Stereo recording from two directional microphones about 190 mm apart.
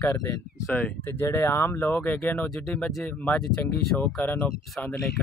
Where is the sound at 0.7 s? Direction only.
10° left (ahead or behind).